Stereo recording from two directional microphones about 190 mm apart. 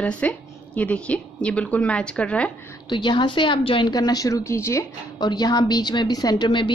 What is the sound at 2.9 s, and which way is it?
Speech, 25° left (ahead or behind).